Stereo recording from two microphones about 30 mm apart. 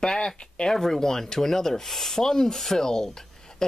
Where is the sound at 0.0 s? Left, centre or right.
Left.